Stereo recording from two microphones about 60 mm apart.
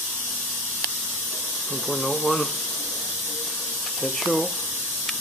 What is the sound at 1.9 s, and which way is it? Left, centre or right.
Speech, centre.